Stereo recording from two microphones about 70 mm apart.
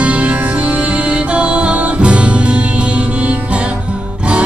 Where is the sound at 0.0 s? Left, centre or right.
Centre.